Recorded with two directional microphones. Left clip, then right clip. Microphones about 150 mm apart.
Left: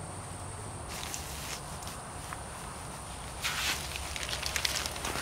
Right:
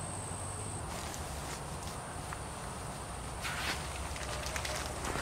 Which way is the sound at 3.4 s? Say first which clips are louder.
Left 5 dB; 20° left (ahead or behind).